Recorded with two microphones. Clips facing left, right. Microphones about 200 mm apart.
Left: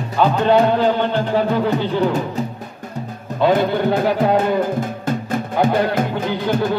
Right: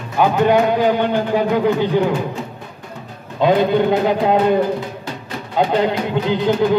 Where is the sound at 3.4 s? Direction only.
15° right (ahead or behind).